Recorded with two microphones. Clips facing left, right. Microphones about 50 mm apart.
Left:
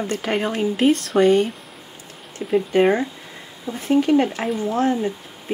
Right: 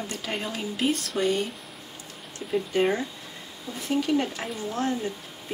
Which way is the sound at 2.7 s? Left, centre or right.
Left.